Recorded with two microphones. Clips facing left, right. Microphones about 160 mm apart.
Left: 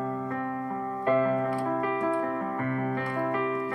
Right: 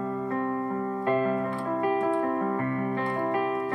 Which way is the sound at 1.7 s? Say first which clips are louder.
Right 2 dB; 30° right (ahead or behind).